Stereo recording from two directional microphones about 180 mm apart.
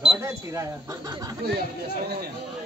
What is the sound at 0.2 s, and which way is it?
Speech, 15° right (ahead or behind).